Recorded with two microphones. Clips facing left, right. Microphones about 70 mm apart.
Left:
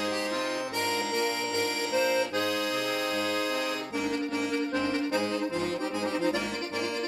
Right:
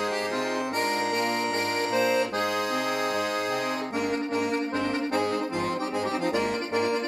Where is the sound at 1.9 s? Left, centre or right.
Right.